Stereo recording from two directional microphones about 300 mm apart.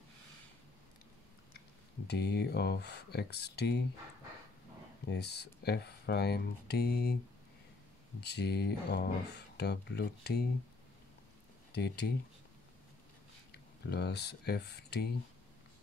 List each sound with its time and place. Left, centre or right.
2.0 s speech: left
5.0 s speech: left
8.2 s speech: left
11.7 s speech: left
13.5 s speech: left